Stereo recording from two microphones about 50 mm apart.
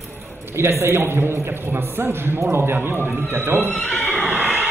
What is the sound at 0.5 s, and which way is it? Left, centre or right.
A man's voice, right.